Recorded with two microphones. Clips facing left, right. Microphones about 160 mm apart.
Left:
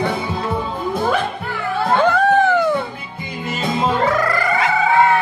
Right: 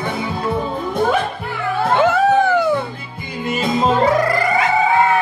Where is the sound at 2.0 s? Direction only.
5° right (ahead or behind).